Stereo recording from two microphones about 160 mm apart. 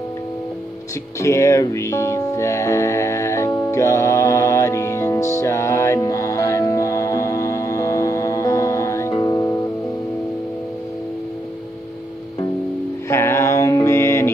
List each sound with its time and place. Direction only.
1.2 s music: 20° left (ahead or behind)
13.1 s mantra: 15° left (ahead or behind)